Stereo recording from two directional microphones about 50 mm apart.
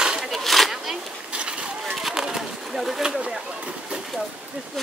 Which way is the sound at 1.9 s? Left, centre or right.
Centre.